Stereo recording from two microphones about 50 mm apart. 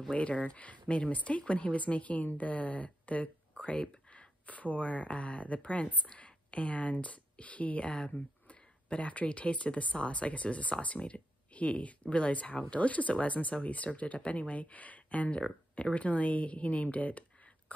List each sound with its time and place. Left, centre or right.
0.1 s speech: left